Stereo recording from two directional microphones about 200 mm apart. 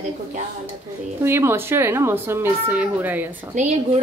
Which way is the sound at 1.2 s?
10° right (ahead or behind).